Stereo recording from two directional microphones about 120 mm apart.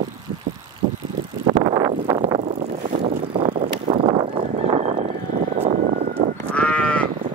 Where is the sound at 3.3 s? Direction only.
50° right (ahead or behind).